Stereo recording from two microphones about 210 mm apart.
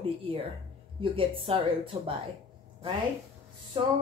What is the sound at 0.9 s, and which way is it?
A woman's voice, 25° right (ahead or behind).